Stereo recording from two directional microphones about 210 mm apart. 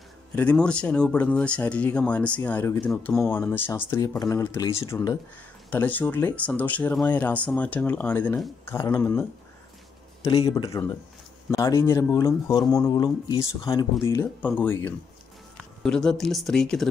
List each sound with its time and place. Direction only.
0.4 s speech: 5° left (ahead or behind)
10.2 s speech: 25° left (ahead or behind)
10.5 s speech: 15° left (ahead or behind)